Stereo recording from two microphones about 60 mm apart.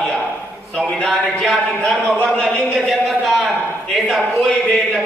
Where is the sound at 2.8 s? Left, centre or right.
Centre.